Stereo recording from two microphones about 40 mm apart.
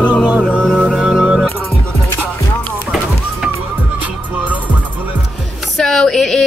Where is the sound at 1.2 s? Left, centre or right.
Centre.